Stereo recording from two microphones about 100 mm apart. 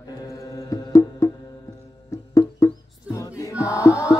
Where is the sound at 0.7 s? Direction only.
30° left (ahead or behind).